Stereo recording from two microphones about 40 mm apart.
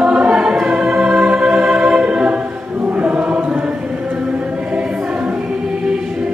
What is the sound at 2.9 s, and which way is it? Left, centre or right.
Choir, right.